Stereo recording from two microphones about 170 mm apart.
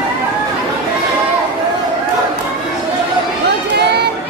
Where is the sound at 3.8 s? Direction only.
80° right.